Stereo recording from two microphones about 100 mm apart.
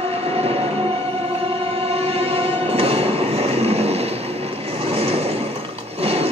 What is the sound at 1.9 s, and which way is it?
Train, 85° right.